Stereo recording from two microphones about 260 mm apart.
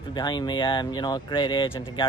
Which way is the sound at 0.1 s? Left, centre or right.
Centre.